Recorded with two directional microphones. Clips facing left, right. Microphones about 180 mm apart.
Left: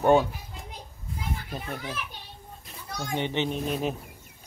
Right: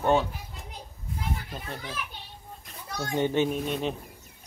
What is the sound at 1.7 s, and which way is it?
Speech, 10° left (ahead or behind).